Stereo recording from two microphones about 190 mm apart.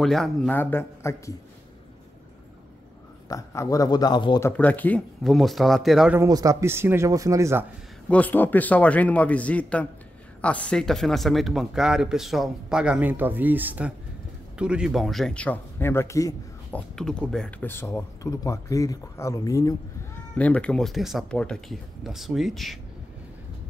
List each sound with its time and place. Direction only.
0.0 s speech: centre (ahead or behind)
3.3 s speech: 15° left (ahead or behind)
4.5 s speech: 10° left (ahead or behind)
6.1 s speech: 20° right (ahead or behind)
8.1 s speech: 10° left (ahead or behind)
16.9 s speech: 5° left (ahead or behind)